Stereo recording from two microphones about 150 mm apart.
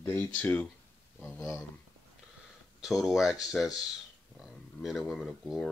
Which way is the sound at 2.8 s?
Centre (ahead or behind).